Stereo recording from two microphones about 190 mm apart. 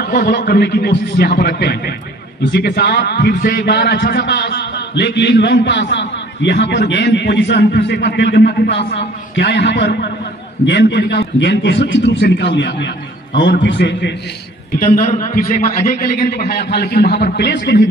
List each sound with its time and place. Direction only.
0.0 s a man's voice: 50° left (ahead or behind); by 14.1 s 70° left (ahead or behind)
14.8 s a man's voice: 40° left (ahead or behind); by 17.8 s 65° left (ahead or behind)